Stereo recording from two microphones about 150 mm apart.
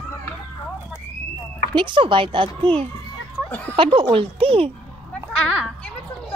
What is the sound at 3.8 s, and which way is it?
Speech, 35° right (ahead or behind).